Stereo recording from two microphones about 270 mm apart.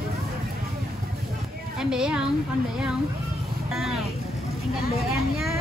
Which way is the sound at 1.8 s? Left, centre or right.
Centre.